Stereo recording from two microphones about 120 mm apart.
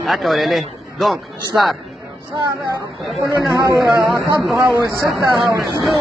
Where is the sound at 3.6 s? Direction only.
25° right (ahead or behind).